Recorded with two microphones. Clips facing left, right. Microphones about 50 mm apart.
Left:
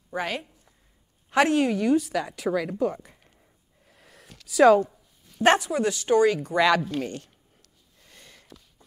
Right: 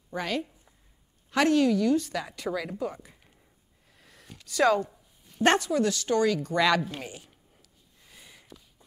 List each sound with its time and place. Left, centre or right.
0.1 s a woman's voice: centre
2.0 s speech: centre
3.9 s a sound: centre
4.5 s speech: centre
5.7 s speech: centre
6.5 s speech: centre
6.8 s speech: centre
8.0 s a sound: centre